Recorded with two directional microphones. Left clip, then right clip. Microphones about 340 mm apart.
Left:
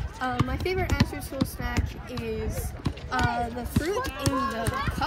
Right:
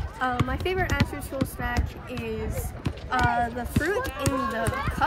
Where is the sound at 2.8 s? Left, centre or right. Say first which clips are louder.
Right 3 dB; centre.